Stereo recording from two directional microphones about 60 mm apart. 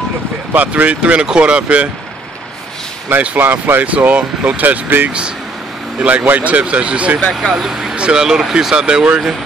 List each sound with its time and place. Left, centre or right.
0.5 s speech: right
3.1 s speech: right
7.5 s speech: centre